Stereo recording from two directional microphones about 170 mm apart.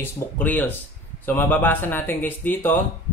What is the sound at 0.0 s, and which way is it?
Speech, 10° left (ahead or behind).